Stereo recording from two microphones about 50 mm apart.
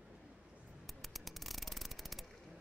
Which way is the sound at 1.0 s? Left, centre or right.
Centre.